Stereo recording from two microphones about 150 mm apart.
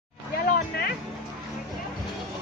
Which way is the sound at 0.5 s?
90° left.